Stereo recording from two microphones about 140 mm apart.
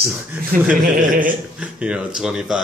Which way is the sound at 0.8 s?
75° right (ahead or behind).